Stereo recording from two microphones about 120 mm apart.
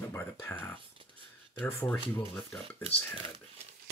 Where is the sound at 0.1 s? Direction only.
15° left (ahead or behind).